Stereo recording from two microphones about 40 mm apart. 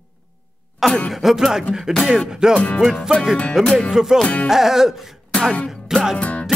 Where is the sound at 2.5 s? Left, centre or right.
Left.